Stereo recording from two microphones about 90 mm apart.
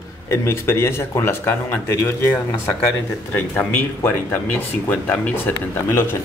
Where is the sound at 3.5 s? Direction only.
25° left (ahead or behind).